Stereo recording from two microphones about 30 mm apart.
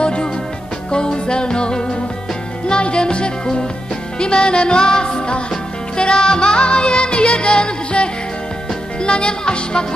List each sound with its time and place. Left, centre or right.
0.0 s music: left
9.0 s speech: left